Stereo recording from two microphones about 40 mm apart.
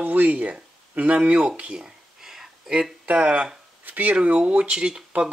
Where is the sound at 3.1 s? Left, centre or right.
Right.